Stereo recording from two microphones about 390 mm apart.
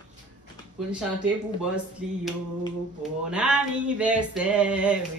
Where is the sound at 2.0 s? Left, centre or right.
Centre.